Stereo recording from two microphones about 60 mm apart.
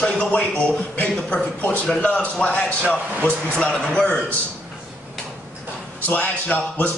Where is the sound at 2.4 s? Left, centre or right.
Left.